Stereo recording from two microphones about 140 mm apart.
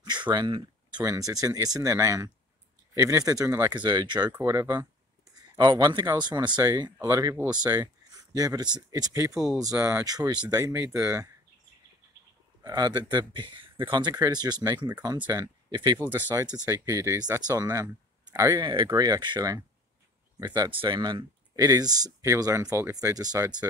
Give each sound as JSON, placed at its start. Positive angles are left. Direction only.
{"t": 0.0, "sound": "a sound", "side_deg": -30}
{"t": 1.0, "sound": "speech", "side_deg": -25}
{"t": 4.3, "sound": "speech", "side_deg": -20}
{"t": 12.6, "sound": "speech", "side_deg": -30}
{"t": 16.0, "sound": "speech", "side_deg": -15}
{"t": 16.5, "sound": "speech", "side_deg": -25}